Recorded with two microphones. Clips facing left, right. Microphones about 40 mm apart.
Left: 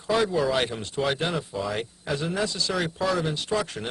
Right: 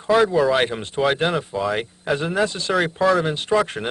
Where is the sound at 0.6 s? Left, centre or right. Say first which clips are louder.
Right 6 dB; right.